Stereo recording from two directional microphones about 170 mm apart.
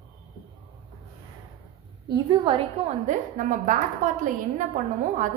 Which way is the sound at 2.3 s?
30° right (ahead or behind).